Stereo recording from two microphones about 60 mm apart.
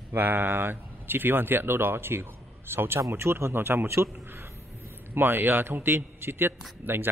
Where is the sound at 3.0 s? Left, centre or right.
Right.